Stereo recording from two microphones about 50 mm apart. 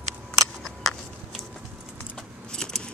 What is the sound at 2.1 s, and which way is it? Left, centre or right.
Keys jangling, centre.